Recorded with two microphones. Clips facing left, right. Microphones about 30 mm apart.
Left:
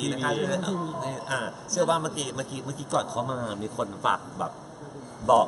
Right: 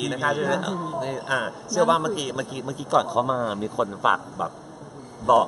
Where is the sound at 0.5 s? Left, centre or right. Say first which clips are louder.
Right 3 dB; centre.